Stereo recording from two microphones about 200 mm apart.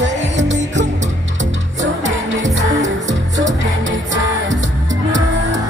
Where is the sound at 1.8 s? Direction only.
35° right (ahead or behind).